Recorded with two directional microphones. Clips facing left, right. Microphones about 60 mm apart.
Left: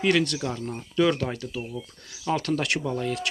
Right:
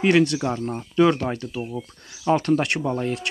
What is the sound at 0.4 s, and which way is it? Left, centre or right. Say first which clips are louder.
Speech: right 5 dB; right.